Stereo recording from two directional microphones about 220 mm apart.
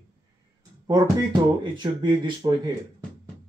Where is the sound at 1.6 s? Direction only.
20° right (ahead or behind).